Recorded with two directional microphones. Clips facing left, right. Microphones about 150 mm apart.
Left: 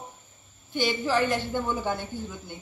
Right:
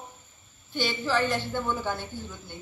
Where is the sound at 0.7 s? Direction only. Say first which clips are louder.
Left 2 dB; 15° left (ahead or behind).